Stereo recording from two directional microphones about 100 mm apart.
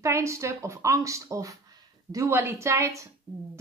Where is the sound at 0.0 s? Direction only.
30° right (ahead or behind).